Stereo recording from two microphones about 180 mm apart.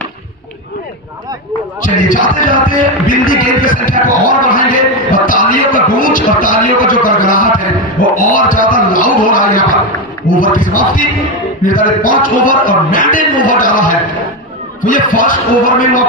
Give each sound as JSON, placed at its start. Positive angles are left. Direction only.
{"t": 2.0, "sound": "a man's voice", "side_deg": 50}